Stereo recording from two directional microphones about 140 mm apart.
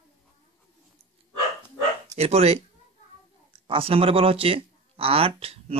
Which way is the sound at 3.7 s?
40° right (ahead or behind).